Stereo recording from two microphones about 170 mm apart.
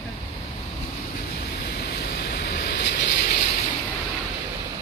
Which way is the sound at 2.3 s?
70° left (ahead or behind).